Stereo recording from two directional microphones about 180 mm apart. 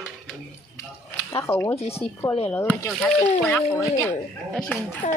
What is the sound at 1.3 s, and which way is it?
Speech, 15° left (ahead or behind).